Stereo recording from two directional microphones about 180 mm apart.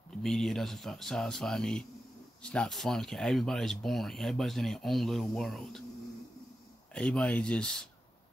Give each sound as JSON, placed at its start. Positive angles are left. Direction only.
{"t": 0.2, "sound": "speech", "side_deg": 0}
{"t": 6.9, "sound": "speech", "side_deg": 5}